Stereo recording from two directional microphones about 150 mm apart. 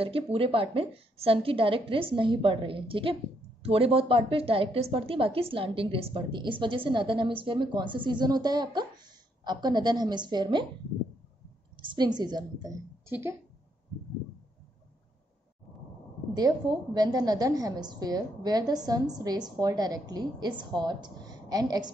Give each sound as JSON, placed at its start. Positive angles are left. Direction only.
{"t": 0.0, "sound": "a woman's voice", "side_deg": -40}
{"t": 11.7, "sound": "a woman's voice", "side_deg": -35}
{"t": 13.1, "sound": "speech", "side_deg": -15}
{"t": 16.3, "sound": "a woman's voice", "side_deg": -30}